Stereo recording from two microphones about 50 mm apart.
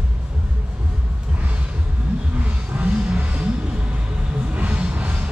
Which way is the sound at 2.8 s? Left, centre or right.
Right.